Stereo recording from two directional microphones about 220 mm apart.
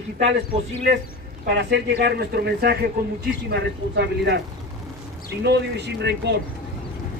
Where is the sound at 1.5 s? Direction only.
50° right (ahead or behind).